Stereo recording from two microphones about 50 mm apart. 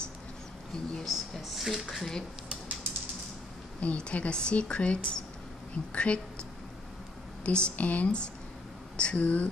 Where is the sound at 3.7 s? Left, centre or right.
Left.